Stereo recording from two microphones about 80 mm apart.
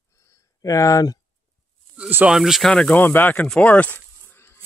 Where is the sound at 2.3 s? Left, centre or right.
Centre.